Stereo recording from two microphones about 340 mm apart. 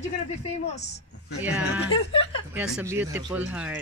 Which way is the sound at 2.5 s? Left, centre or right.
Centre.